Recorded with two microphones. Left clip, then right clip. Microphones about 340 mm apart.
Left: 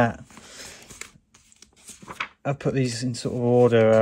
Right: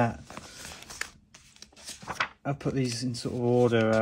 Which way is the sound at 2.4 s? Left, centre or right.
Left.